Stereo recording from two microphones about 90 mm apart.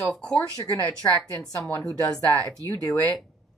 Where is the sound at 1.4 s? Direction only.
20° left (ahead or behind).